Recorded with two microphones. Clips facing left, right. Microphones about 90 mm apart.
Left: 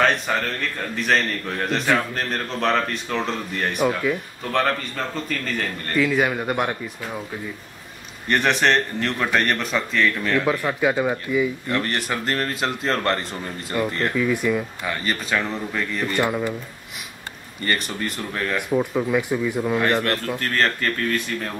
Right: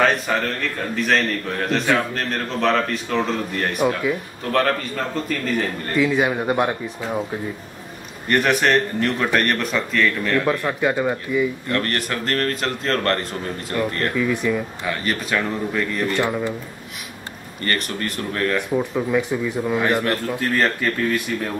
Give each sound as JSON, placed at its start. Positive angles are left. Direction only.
{"t": 0.0, "sound": "a man's voice", "side_deg": 0}
{"t": 8.3, "sound": "speech", "side_deg": -5}
{"t": 17.6, "sound": "speech", "side_deg": 5}